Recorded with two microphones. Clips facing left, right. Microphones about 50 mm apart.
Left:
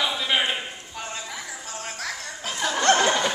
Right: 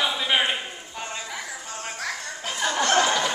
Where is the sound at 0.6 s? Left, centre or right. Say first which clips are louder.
Even; centre.